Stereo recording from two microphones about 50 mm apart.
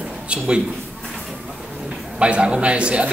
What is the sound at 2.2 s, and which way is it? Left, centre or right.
Speech, right.